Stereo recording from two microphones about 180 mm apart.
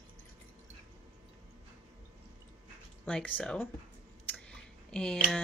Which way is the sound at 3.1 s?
5° left (ahead or behind).